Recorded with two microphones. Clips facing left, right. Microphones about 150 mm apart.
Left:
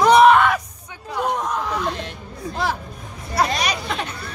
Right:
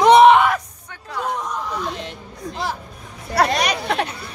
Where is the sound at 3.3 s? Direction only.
60° right (ahead or behind).